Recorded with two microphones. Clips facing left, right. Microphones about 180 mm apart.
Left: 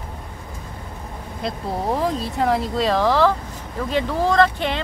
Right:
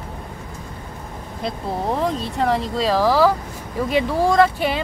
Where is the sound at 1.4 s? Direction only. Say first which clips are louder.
Even; centre (ahead or behind).